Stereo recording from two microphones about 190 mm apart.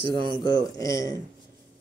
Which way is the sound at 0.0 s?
25° right (ahead or behind).